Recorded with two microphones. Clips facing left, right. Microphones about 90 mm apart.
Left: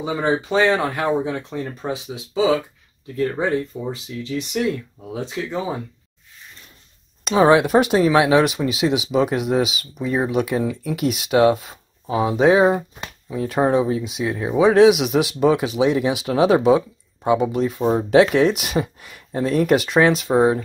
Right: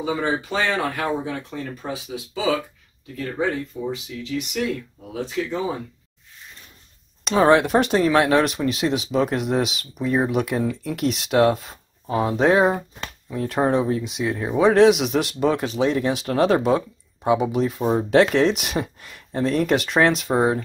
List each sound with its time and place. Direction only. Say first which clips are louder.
0.0 s speech: left 2 dB; 20° left (ahead or behind)
3.7 s speech: even; 30° left (ahead or behind)
5.1 s speech: right 1 dB; 20° left (ahead or behind)
7.2 s speech: left 2 dB; 5° left (ahead or behind)